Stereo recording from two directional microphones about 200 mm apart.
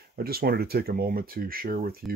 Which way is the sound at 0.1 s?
50° right (ahead or behind).